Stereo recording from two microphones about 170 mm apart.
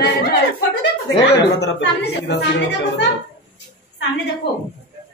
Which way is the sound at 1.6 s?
80° left.